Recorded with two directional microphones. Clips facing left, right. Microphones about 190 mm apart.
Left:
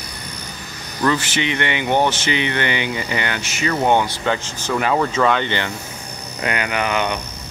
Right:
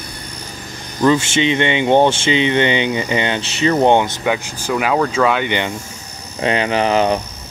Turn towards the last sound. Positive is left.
turn(degrees=-30)  # may be behind; listen again after turning